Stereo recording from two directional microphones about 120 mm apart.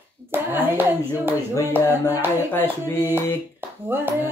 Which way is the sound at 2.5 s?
15° left (ahead or behind).